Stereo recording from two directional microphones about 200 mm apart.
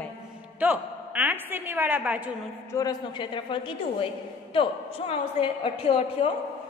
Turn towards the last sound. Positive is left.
turn(degrees=25)  # may be behind; listen again after turning